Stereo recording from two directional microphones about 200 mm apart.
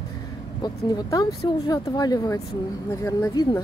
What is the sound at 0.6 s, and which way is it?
Speech, 20° left (ahead or behind).